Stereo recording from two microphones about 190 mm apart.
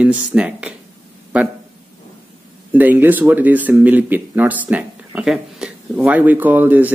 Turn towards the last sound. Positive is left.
turn(degrees=-10)  # may be behind; listen again after turning